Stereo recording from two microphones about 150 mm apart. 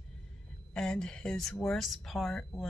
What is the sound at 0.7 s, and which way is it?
Speech, 5° left (ahead or behind).